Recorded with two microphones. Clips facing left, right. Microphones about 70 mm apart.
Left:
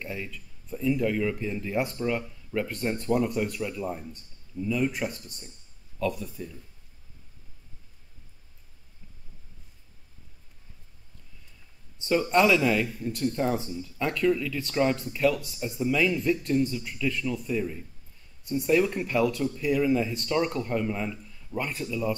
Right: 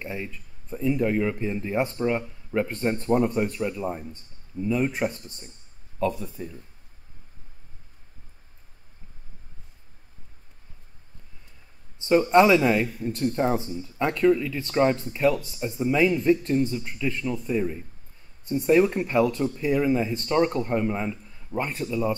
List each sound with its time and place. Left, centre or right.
0.0 s a man's voice: right
12.1 s a man's voice: right